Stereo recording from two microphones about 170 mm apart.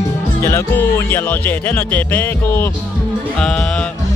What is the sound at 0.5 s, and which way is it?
Music, 15° left (ahead or behind).